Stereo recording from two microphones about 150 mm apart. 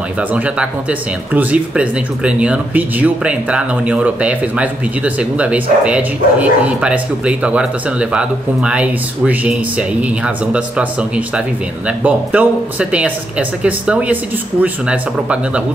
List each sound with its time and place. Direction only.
0.3 s speech: 10° right (ahead or behind)